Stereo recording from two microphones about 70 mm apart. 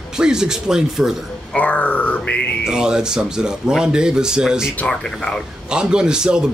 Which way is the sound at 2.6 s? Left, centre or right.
Centre.